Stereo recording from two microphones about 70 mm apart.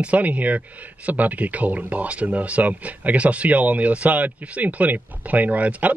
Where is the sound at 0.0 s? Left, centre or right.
Right.